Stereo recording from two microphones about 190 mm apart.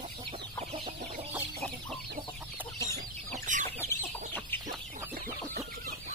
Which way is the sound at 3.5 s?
40° right (ahead or behind).